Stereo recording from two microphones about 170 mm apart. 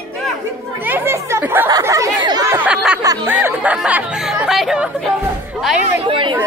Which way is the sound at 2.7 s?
5° right (ahead or behind).